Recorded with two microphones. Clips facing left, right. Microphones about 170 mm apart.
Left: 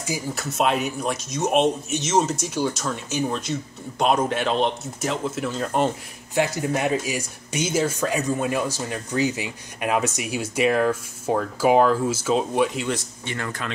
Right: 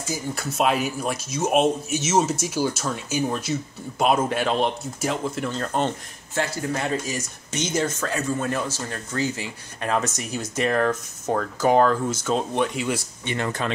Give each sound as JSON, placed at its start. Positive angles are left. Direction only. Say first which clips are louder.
{"t": 0.3, "sound": "speech", "louder": "even", "side_deg": 0}
{"t": 13.2, "sound": "speech", "louder": "right 4 dB", "side_deg": -20}